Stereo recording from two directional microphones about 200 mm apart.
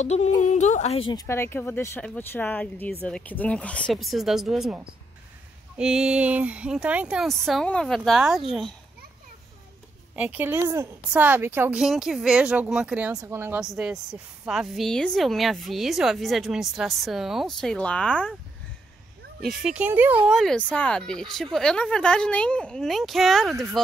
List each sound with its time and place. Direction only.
0.0 s speech: 35° left (ahead or behind)
1.2 s a woman's voice: 10° left (ahead or behind)
10.1 s a woman's voice: 5° right (ahead or behind)
19.4 s a woman's voice: 5° right (ahead or behind)